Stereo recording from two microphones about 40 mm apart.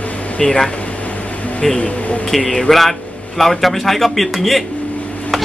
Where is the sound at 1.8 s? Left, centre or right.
Left.